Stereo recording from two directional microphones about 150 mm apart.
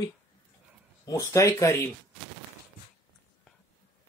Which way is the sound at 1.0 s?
25° left (ahead or behind).